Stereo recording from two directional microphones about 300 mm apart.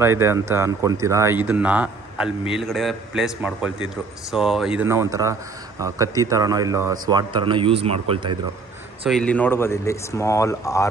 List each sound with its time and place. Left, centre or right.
0.0 s a man's voice: centre
9.0 s speech: centre